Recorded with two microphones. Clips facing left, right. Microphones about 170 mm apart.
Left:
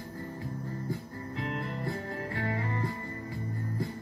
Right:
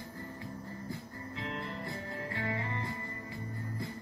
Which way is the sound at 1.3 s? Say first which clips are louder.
Left 4 dB; 45° left (ahead or behind).